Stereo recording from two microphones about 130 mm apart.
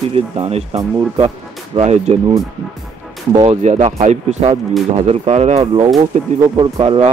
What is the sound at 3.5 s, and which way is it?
Speech, 60° right (ahead or behind).